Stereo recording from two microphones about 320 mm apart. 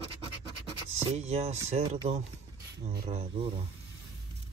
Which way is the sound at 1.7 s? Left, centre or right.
Centre.